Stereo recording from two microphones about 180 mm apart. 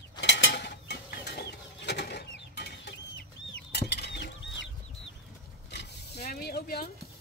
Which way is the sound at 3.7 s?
65° left (ahead or behind).